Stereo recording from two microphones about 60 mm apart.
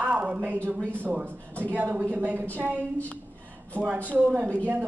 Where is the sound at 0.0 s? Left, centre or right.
Right.